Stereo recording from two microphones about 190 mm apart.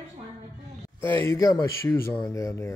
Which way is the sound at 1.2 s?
15° left (ahead or behind).